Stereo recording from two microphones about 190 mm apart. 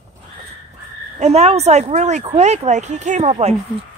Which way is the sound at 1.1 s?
35° right (ahead or behind).